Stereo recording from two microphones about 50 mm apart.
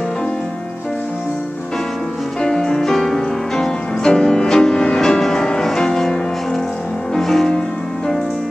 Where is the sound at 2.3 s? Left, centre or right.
Centre.